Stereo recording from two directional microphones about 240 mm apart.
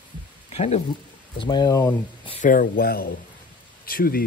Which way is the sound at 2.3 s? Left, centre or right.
Left.